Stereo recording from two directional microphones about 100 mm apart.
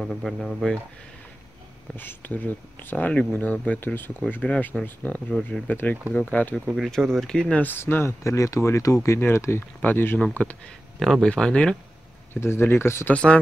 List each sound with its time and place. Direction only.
0.0 s speech: centre (ahead or behind)
2.0 s speech: 20° left (ahead or behind)
5.3 s speech: 5° left (ahead or behind)
6.6 s speech: 5° right (ahead or behind)
6.9 s speech: 5° left (ahead or behind)
11.0 s speech: centre (ahead or behind)
12.4 s speech: 25° left (ahead or behind)
13.1 s speech: 10° left (ahead or behind)